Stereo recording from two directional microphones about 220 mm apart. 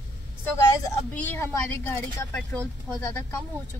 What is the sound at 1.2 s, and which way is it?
Speech, 10° left (ahead or behind).